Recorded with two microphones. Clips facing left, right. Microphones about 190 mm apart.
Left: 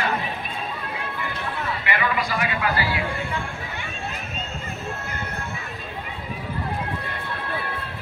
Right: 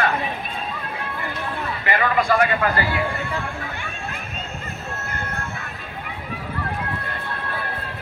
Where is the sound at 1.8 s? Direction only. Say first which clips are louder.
Right 6 dB; 45° right (ahead or behind).